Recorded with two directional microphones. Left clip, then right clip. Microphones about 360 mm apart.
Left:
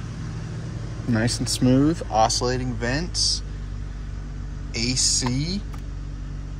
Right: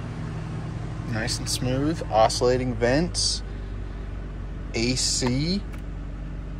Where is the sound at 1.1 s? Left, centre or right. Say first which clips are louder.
Left 3 dB; left; by 3.4 s centre.